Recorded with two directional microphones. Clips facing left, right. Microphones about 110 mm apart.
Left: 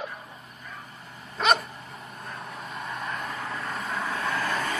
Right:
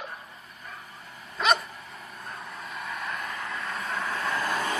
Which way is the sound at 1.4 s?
Centre (ahead or behind).